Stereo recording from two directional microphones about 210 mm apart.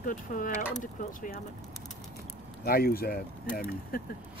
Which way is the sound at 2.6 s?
45° left (ahead or behind).